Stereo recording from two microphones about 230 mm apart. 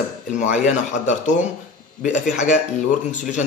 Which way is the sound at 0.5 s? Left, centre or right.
Left.